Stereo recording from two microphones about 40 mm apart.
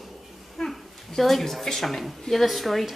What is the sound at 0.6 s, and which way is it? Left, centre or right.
A woman's voice, centre.